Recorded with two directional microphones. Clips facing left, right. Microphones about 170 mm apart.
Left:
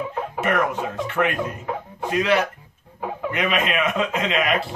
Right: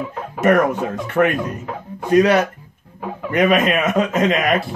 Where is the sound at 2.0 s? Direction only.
45° right (ahead or behind).